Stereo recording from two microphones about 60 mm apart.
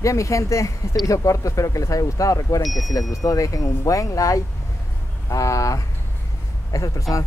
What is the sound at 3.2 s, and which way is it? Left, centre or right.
Speech, left.